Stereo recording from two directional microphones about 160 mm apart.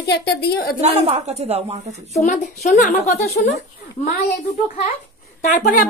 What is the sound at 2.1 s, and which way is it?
A woman's voice, 50° left (ahead or behind).